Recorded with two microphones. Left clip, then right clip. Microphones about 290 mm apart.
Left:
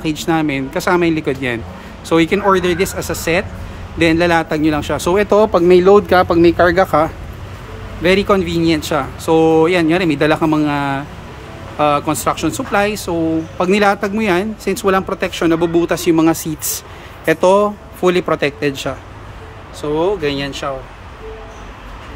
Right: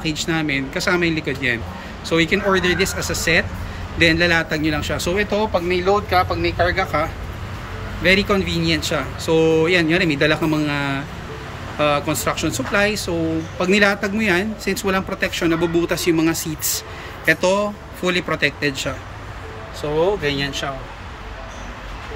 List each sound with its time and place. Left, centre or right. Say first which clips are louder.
0.0 s speech: left 5 dB; centre
8.0 s speech: left 4 dB; centre
20.0 s speech: left 1 dB; centre